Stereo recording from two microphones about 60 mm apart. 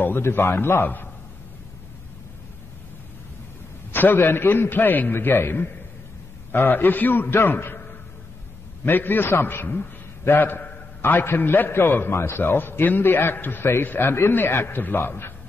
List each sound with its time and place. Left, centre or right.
0.0 s a man's voice: left
3.9 s a man's voice: left
8.8 s a man's voice: left